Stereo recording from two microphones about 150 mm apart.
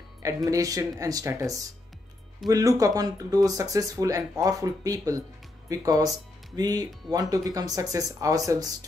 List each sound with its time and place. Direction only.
0.5 s speech: 20° right (ahead or behind)